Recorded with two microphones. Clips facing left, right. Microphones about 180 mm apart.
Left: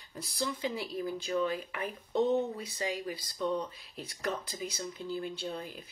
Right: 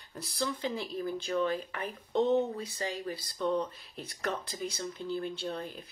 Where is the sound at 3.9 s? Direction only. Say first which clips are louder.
Left 2 dB; centre (ahead or behind).